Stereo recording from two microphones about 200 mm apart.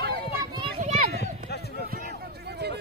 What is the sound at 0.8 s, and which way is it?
Children playing, 40° right (ahead or behind).